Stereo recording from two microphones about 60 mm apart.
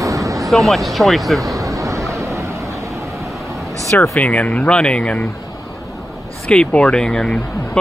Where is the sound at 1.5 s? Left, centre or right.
Right.